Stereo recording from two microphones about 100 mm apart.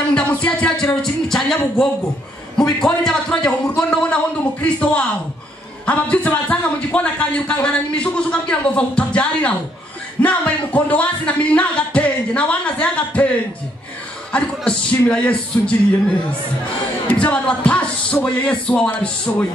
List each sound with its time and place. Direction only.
0.1 s a man's voice: 10° left (ahead or behind)
14.3 s a man's voice: 10° left (ahead or behind)
17.1 s a man's voice: 10° left (ahead or behind)
19.3 s music: 25° left (ahead or behind)